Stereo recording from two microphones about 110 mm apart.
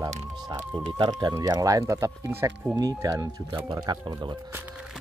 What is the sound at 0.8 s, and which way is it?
Speech, 45° right (ahead or behind).